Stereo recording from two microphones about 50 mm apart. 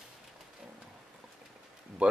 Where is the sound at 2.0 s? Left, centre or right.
Right.